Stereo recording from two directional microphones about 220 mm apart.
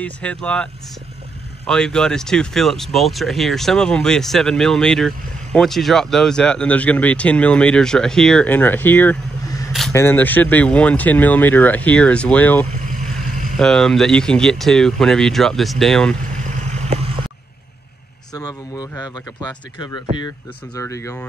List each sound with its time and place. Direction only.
0.0 s speech: 5° left (ahead or behind)
1.7 s speech: 5° left (ahead or behind)
13.3 s vehicle: 40° right (ahead or behind)
13.6 s speech: centre (ahead or behind)
18.3 s speech: 15° left (ahead or behind)